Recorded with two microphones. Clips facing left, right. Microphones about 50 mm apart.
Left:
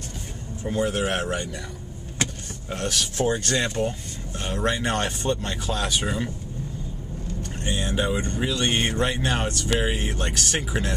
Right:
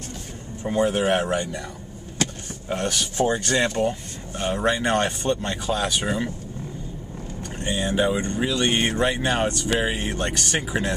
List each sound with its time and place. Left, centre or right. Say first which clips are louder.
0.7 s speech: right 4 dB; centre
2.7 s speech: right 2 dB; centre
3.8 s speech: right 3 dB; right
4.4 s speech: right 3 dB; centre
7.5 s speech: right 4 dB; centre